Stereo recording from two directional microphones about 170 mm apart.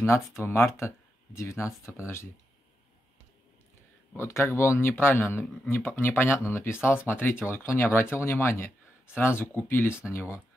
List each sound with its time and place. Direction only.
0.0 s speech: 15° left (ahead or behind)
4.1 s speech: 15° left (ahead or behind)